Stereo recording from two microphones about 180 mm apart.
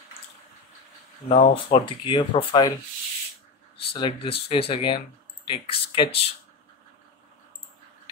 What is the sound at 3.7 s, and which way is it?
Speech, 25° left (ahead or behind).